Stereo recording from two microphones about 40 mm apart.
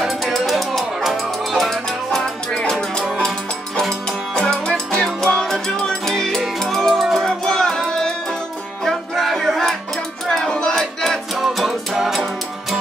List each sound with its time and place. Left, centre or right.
0.0 s music: centre
4.4 s music: centre
10.4 s music: centre
11.3 s music: centre